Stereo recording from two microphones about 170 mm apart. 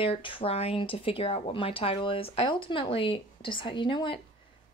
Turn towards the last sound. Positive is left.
turn(degrees=30)  # may be behind; listen again after turning